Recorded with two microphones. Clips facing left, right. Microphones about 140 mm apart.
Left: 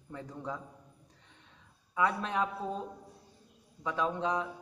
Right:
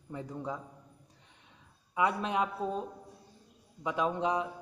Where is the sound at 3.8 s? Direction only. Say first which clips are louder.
Right 2 dB; 15° right (ahead or behind).